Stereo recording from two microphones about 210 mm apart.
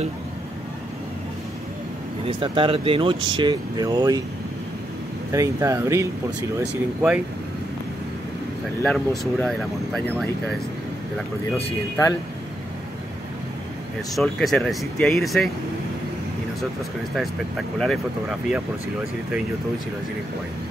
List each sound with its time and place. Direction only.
2.2 s speech: 25° right (ahead or behind)
5.3 s speech: 15° right (ahead or behind)
8.8 s speech: centre (ahead or behind)
14.1 s speech: centre (ahead or behind)
17.1 s speech: centre (ahead or behind)